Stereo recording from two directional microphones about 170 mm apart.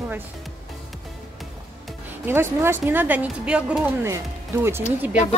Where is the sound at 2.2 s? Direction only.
15° right (ahead or behind).